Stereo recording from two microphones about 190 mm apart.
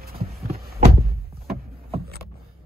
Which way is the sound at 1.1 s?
55° right (ahead or behind).